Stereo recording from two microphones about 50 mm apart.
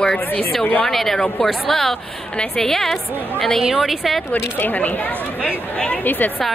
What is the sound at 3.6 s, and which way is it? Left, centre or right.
Speech, centre.